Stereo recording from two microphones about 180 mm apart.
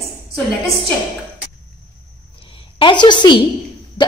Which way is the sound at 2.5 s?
25° left (ahead or behind).